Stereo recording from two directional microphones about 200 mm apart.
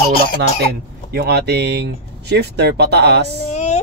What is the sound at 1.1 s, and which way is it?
Speech, 55° right (ahead or behind).